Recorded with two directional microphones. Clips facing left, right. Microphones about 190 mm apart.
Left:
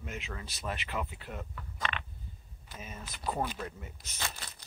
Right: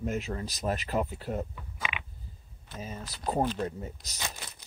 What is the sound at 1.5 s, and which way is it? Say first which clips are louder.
Insect: left 1 dB; 10° right (ahead or behind).